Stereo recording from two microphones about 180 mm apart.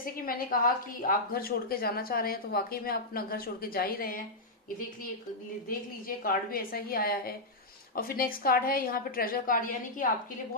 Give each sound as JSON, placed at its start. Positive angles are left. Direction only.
{"t": 0.0, "sound": "a woman's voice", "side_deg": 55}
{"t": 6.0, "sound": "a woman's voice", "side_deg": 55}